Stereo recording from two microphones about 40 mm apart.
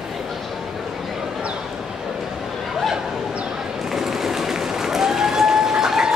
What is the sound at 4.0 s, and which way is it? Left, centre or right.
Applause, centre.